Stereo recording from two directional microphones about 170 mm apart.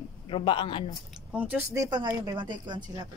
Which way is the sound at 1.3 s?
10° right (ahead or behind).